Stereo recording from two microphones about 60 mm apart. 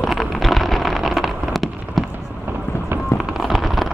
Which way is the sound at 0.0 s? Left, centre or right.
Centre.